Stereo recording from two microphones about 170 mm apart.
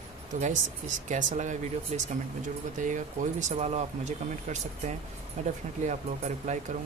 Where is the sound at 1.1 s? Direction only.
45° right (ahead or behind).